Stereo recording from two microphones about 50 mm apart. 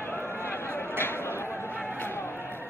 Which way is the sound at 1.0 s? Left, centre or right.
Left.